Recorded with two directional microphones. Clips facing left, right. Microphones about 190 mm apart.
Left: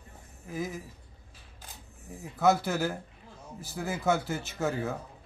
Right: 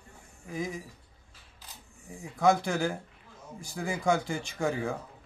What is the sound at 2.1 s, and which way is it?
A man's voice, 5° left (ahead or behind).